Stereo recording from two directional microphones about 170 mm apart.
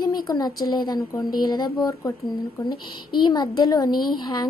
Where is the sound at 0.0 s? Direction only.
25° left (ahead or behind).